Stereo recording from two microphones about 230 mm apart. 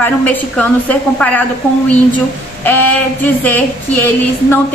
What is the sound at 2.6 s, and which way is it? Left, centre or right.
A woman's voice, centre.